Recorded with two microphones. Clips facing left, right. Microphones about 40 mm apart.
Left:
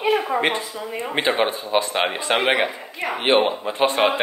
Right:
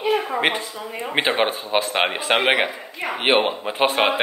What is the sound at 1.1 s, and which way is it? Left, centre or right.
A man's voice, right.